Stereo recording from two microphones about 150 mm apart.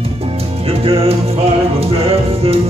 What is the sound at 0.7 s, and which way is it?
Music, 40° right (ahead or behind).